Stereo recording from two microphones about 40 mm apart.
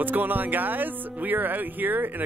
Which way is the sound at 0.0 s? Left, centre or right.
Right.